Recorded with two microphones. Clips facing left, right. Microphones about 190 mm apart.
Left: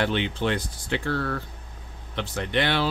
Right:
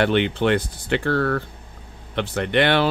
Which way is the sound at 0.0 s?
60° right (ahead or behind).